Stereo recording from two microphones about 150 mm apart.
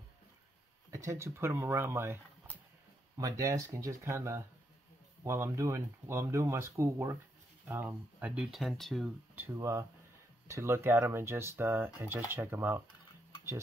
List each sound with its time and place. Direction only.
0.9 s speech: 20° right (ahead or behind)
3.2 s speech: 20° right (ahead or behind); by 9.1 s centre (ahead or behind)
9.3 s speech: 15° right (ahead or behind)